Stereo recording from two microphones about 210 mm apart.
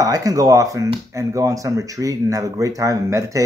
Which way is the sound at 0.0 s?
15° right (ahead or behind).